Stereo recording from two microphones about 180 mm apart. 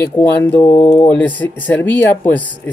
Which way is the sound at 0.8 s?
35° left (ahead or behind).